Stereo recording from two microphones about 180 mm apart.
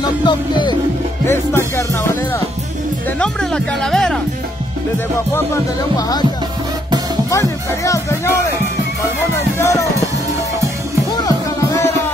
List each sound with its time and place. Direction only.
0.2 s speech: 25° left (ahead or behind)
1.2 s music: 15° left (ahead or behind)
3.2 s music: 5° left (ahead or behind)
5.3 s speech: 15° left (ahead or behind)
7.2 s speech: 15° left (ahead or behind)